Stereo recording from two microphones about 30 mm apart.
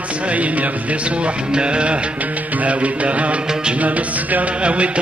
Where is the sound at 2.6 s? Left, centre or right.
Right.